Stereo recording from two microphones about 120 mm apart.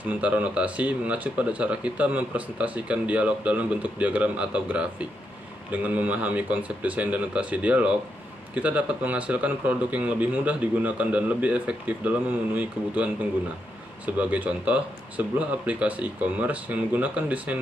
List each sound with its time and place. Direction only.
0.2 s speech: 10° right (ahead or behind)